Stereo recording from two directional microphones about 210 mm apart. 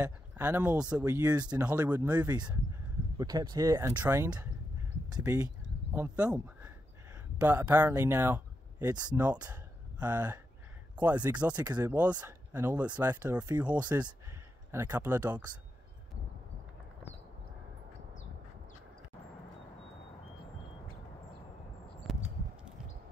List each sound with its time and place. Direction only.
0.0 s speech: 10° right (ahead or behind)
1.6 s speech: 5° right (ahead or behind)
2.3 s speech: 20° right (ahead or behind)